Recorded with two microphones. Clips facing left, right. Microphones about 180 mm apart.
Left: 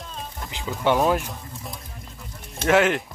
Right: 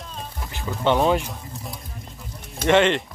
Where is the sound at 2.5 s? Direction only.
5° left (ahead or behind).